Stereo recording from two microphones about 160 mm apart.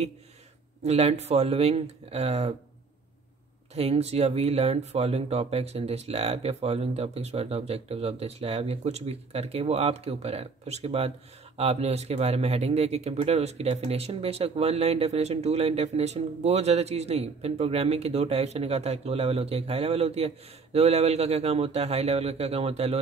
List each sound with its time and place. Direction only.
0.8 s speech: 40° right (ahead or behind)
3.7 s speech: 40° right (ahead or behind)